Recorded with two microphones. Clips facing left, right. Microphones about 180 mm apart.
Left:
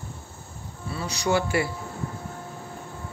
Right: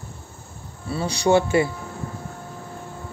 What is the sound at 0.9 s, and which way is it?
Speech, 30° right (ahead or behind).